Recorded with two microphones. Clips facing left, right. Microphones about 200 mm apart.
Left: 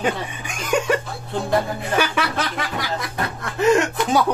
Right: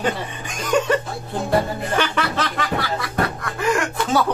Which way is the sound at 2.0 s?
10° left (ahead or behind).